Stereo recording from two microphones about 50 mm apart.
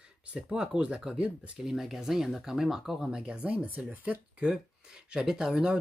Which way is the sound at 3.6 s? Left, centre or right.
Right.